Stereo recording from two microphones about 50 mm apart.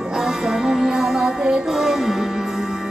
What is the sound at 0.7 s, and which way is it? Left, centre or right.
Music, centre.